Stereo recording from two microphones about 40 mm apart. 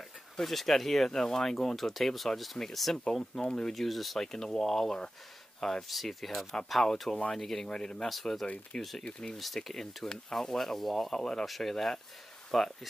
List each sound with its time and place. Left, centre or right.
0.4 s speech: centre
4.2 s speech: centre
7.6 s speech: left
8.0 s speech: centre
8.7 s speech: left
9.7 s speech: centre
11.4 s speech: centre
11.7 s speech: centre